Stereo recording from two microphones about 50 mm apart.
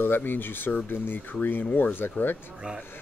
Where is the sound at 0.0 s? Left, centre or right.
Left.